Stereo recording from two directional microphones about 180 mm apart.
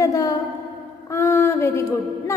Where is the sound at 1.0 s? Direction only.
15° left (ahead or behind).